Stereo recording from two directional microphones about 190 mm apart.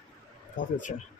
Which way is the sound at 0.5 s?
45° left (ahead or behind).